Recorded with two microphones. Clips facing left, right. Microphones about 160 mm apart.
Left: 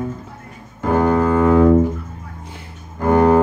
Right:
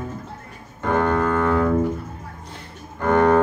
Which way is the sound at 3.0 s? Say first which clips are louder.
Left 3 dB; 10° left (ahead or behind).